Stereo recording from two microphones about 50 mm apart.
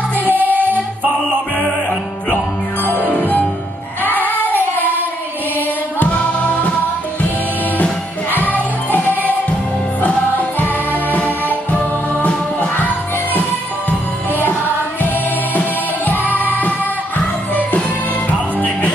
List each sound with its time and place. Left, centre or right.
0.2 s music: right
2.8 s music: left
5.9 s music: left
8.3 s music: left
10.0 s music: left
16.1 s music: left